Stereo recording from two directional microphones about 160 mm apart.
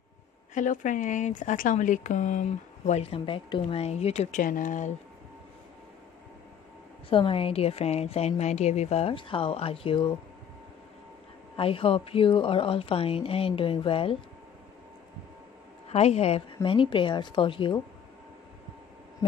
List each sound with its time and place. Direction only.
0.6 s speech: 50° left (ahead or behind)
4.4 s speech: 60° left (ahead or behind)
7.1 s a woman's voice: 35° left (ahead or behind)
11.5 s a woman's voice: 35° left (ahead or behind)
15.9 s a woman's voice: 40° left (ahead or behind)